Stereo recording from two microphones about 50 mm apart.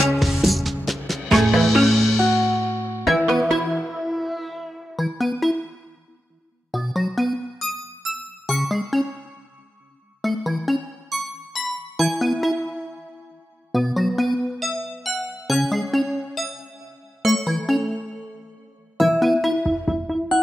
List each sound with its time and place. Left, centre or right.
0.0 s music: centre
2.3 s music: left
3.3 s music: centre
6.7 s music: centre
10.2 s music: centre
13.7 s music: centre
18.9 s music: centre